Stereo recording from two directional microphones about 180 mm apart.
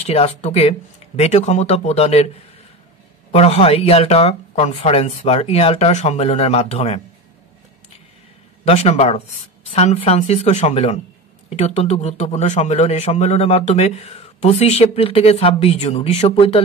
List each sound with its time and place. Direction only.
0.0 s a man's voice: 35° left (ahead or behind)
8.6 s a man's voice: 35° left (ahead or behind)